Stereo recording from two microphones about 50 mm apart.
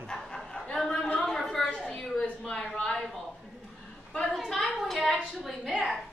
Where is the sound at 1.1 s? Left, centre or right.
Centre.